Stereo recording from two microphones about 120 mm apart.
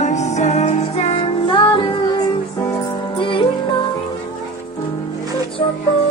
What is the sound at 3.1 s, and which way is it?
Music, 45° left (ahead or behind).